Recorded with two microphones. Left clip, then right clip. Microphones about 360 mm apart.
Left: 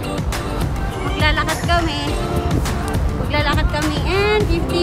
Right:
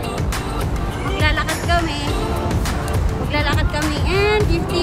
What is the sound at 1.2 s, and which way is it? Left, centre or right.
Speech, centre.